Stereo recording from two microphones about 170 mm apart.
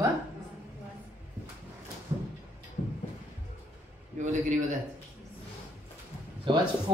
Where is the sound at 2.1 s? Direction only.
30° right (ahead or behind).